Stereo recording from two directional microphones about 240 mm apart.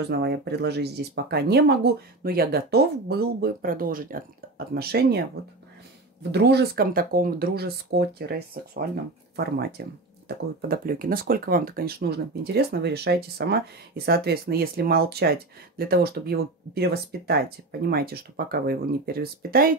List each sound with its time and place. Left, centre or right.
0.0 s speech: right